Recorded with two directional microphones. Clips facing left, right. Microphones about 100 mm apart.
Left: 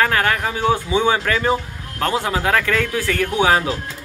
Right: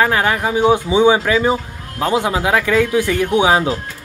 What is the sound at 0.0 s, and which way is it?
A man's voice, 15° right (ahead or behind).